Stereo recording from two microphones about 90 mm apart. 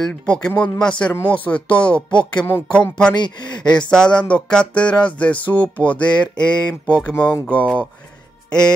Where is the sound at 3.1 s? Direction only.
55° left (ahead or behind).